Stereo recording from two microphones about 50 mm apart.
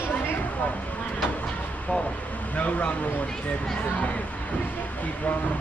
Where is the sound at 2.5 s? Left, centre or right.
Left.